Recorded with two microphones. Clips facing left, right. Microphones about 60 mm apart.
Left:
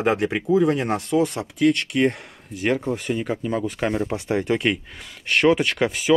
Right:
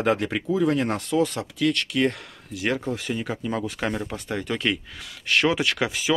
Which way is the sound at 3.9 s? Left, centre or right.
Centre.